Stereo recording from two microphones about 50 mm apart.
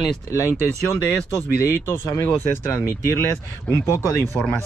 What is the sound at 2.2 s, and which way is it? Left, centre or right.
Speech, left.